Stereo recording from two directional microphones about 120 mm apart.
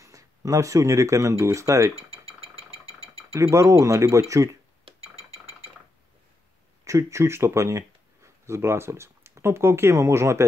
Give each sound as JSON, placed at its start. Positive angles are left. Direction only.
{"t": 0.0, "sound": "speech", "side_deg": -30}
{"t": 3.3, "sound": "speech", "side_deg": -25}
{"t": 6.8, "sound": "speech", "side_deg": -25}